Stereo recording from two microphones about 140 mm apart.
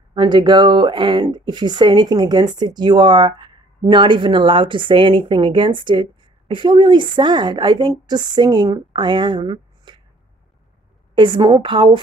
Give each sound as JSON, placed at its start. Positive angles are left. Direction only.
{"t": 0.1, "sound": "speech", "side_deg": -30}
{"t": 11.1, "sound": "speech", "side_deg": -35}